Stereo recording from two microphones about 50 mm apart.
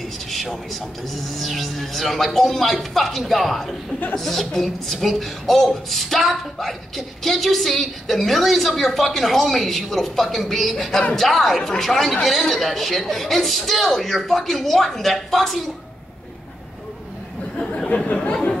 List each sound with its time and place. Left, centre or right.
0.3 s a sound: centre
1.3 s a woman's voice: centre
17.8 s chatter: left